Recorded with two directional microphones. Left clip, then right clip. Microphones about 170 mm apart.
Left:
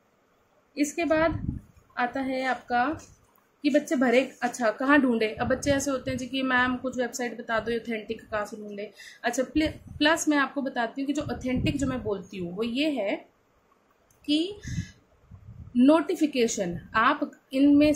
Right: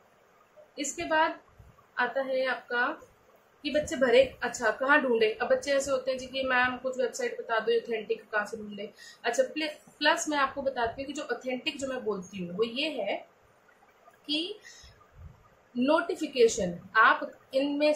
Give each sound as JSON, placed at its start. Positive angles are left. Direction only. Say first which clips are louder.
{"t": 0.7, "sound": "a woman's voice", "louder": "left 3 dB", "side_deg": 55}
{"t": 9.2, "sound": "speech", "louder": "left 2 dB", "side_deg": 55}
{"t": 14.2, "sound": "a woman's voice", "louder": "left 5 dB", "side_deg": 55}
{"t": 15.8, "sound": "speech", "louder": "left 5 dB", "side_deg": 55}